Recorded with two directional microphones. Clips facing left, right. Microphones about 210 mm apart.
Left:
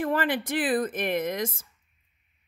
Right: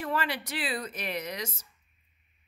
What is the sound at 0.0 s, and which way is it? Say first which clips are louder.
Speech: left 6 dB; 50° left (ahead or behind).